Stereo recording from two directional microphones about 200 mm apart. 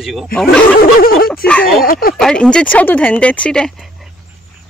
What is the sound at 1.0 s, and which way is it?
Speech, 45° left (ahead or behind).